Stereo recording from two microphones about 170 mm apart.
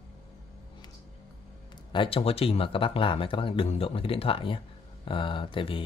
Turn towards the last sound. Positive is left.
turn(degrees=30)  # may be behind; listen again after turning